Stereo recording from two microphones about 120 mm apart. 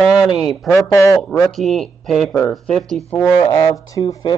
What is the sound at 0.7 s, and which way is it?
Speech, 25° left (ahead or behind).